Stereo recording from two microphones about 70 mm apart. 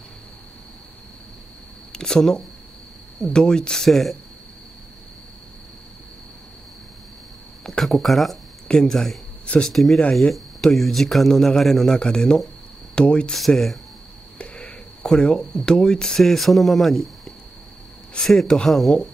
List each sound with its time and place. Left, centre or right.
1.9 s speech: centre
7.6 s speech: centre
13.5 s speech: centre
14.4 s speech: centre